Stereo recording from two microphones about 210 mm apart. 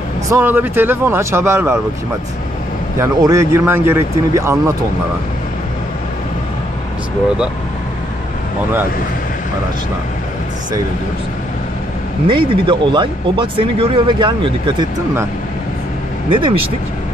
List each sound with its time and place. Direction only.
0.3 s speech: 10° right (ahead or behind)
3.0 s speech: 15° right (ahead or behind)
12.3 s speech: 25° right (ahead or behind)
16.3 s speech: 25° right (ahead or behind)